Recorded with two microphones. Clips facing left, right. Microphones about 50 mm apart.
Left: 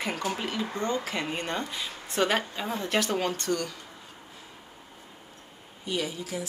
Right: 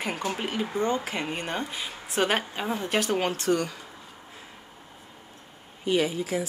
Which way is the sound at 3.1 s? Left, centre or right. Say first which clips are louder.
Right 3 dB; right.